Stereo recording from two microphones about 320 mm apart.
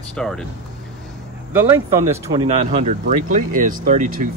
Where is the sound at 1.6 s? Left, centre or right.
Centre.